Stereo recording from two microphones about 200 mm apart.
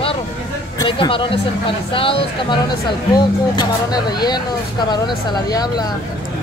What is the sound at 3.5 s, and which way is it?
Speech, 20° left (ahead or behind).